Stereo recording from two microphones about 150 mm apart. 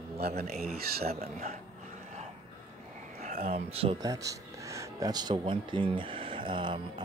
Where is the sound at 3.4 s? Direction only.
40° right (ahead or behind).